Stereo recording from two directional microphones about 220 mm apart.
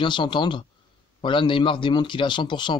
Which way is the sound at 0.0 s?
20° left (ahead or behind).